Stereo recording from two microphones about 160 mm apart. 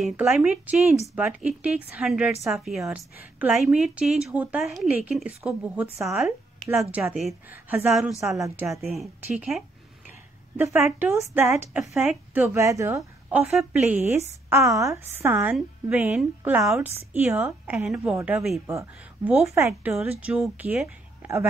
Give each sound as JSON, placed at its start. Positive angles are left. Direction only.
{"t": 0.0, "sound": "a woman's voice", "side_deg": -5}
{"t": 6.6, "sound": "a woman's voice", "side_deg": -5}
{"t": 8.8, "sound": "a woman's voice", "side_deg": 0}
{"t": 10.9, "sound": "a woman's voice", "side_deg": 0}
{"t": 11.1, "sound": "a woman's voice", "side_deg": -20}
{"t": 11.9, "sound": "a woman's voice", "side_deg": -5}
{"t": 12.4, "sound": "a woman's voice", "side_deg": -20}
{"t": 13.4, "sound": "a woman's voice", "side_deg": -5}
{"t": 14.5, "sound": "a woman's voice", "side_deg": -20}
{"t": 18.7, "sound": "a woman's voice", "side_deg": -15}